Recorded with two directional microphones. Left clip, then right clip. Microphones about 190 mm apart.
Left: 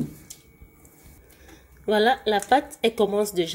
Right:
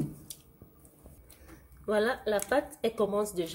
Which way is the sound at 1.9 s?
20° left (ahead or behind).